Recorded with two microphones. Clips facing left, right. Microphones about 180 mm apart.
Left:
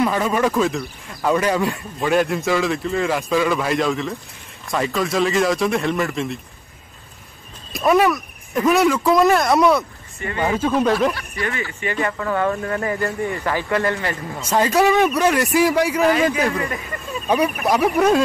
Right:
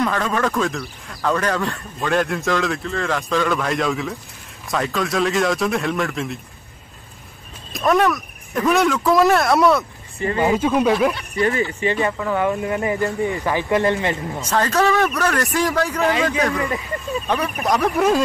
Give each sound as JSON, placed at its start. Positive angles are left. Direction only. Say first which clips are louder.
{"t": 0.0, "sound": "speech", "louder": "left 2 dB", "side_deg": 10}
{"t": 1.2, "sound": "a man's voice", "louder": "left 2 dB", "side_deg": 10}
{"t": 2.0, "sound": "speech", "louder": "left 2 dB", "side_deg": 5}
{"t": 7.7, "sound": "speech", "louder": "left 1 dB", "side_deg": 0}
{"t": 10.1, "sound": "speech", "louder": "right 5 dB", "side_deg": -30}
{"t": 10.4, "sound": "speech", "louder": "right 1 dB", "side_deg": -15}
{"t": 11.1, "sound": "speech", "louder": "right 6 dB", "side_deg": -30}
{"t": 14.5, "sound": "a man's voice", "louder": "left 2 dB", "side_deg": 15}